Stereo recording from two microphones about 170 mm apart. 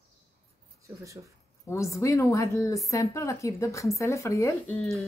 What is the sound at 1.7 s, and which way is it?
A woman's voice, 15° left (ahead or behind).